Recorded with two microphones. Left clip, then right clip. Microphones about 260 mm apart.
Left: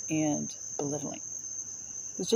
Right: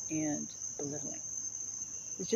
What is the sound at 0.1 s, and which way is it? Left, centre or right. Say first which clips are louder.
Cricket: left 7 dB; left.